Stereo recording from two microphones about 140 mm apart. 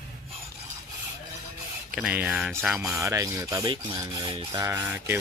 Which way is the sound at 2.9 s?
20° right (ahead or behind).